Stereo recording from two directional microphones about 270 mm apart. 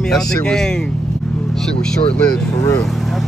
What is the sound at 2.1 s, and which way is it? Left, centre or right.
Speech, centre.